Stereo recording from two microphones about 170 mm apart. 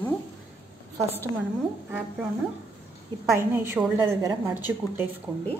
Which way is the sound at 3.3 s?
15° right (ahead or behind).